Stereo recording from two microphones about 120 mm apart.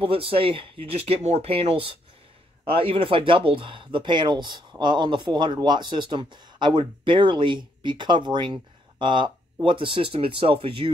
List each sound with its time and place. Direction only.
0.0 s speech: 50° right (ahead or behind)